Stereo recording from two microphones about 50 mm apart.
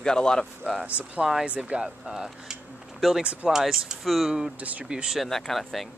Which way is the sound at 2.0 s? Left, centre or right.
Centre.